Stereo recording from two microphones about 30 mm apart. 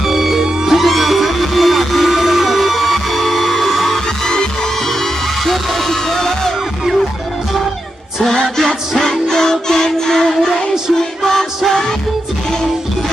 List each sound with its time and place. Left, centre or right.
0.0 s music: centre
0.7 s music: centre
4.3 s music: left
5.4 s music: centre
8.3 s music: centre